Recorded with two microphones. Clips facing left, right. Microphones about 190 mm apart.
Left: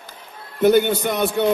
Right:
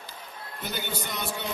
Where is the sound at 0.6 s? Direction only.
60° left (ahead or behind).